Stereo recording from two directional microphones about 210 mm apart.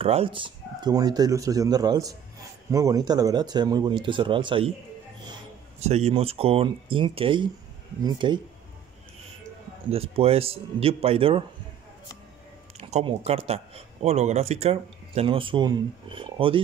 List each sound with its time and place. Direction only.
0.0 s speech: 30° right (ahead or behind)
5.8 s speech: 30° right (ahead or behind)
9.8 s speech: 30° right (ahead or behind)
12.7 s speech: 30° right (ahead or behind)